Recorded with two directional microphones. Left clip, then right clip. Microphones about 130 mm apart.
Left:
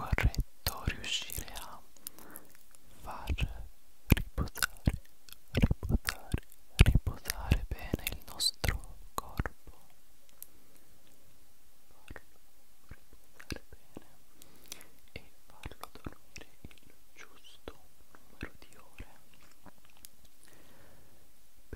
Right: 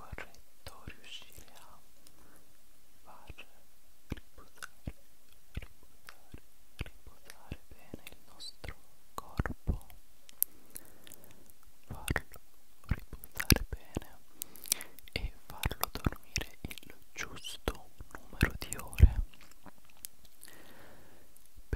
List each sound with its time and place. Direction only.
0.0 s whispering: 20° left (ahead or behind)
4.1 s chewing: 25° left (ahead or behind)
9.1 s whispering: 5° left (ahead or behind)
9.8 s clicking: 20° right (ahead or behind)
12.0 s whispering: 25° right (ahead or behind)
12.8 s chewing: 30° right (ahead or behind)
14.5 s whispering: 15° right (ahead or behind)
19.6 s biting: 10° right (ahead or behind)